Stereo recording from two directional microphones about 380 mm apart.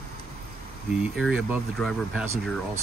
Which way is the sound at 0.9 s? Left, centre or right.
Centre.